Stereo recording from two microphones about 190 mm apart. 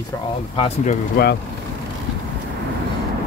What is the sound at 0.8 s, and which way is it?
Speech, 50° left (ahead or behind).